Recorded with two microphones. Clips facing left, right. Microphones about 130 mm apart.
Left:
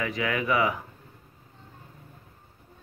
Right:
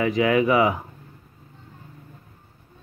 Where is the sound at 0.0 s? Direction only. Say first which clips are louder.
Right 9 dB; 25° right (ahead or behind).